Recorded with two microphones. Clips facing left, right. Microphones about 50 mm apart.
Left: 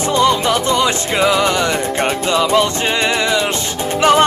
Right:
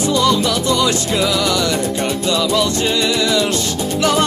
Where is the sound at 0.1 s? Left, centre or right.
Left.